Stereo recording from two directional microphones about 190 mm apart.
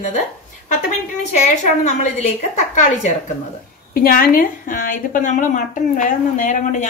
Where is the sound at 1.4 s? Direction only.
35° left (ahead or behind).